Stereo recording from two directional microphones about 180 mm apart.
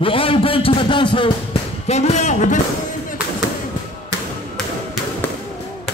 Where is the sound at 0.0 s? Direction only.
30° left (ahead or behind).